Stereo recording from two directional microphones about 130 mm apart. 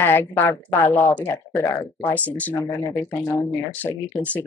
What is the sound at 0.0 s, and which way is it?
Speech, 15° left (ahead or behind).